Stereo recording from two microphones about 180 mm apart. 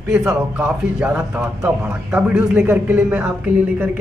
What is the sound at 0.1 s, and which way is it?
Speech, 10° right (ahead or behind).